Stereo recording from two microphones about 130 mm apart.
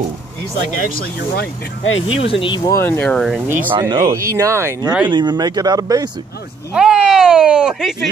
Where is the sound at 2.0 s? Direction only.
40° left (ahead or behind).